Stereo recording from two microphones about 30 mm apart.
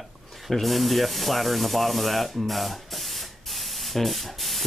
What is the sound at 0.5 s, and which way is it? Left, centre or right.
Speech, centre.